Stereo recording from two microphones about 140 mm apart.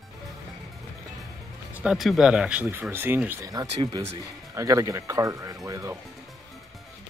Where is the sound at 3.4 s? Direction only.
25° right (ahead or behind).